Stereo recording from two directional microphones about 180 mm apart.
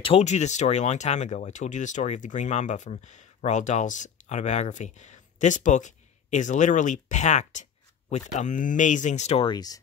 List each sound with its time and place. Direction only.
0.0 s speech: 35° left (ahead or behind)
9.5 s speech: 20° left (ahead or behind)